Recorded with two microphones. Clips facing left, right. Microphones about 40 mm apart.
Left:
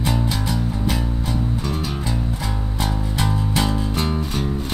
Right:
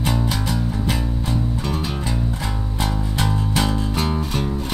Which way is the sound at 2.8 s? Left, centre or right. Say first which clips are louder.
Right 1 dB; centre.